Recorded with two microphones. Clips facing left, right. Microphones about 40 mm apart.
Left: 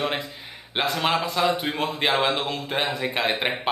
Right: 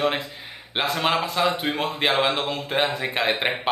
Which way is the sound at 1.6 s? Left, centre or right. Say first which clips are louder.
Right 1 dB; right.